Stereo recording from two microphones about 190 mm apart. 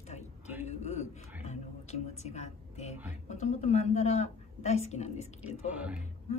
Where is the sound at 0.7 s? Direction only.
35° left (ahead or behind).